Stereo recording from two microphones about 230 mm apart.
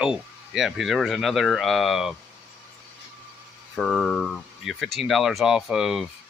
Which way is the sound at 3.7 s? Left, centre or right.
Centre.